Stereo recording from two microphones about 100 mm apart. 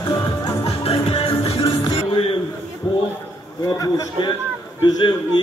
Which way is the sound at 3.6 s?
40° left (ahead or behind).